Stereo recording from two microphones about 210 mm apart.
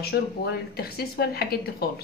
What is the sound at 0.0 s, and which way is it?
Speech, 50° left (ahead or behind).